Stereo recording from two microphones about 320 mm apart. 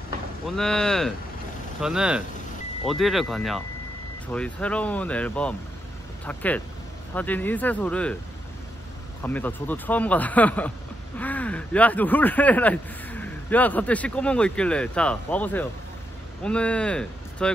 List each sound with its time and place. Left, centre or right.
0.5 s speech: centre
9.2 s speech: centre